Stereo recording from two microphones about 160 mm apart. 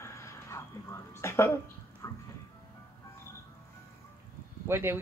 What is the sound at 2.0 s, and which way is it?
Music, 20° left (ahead or behind).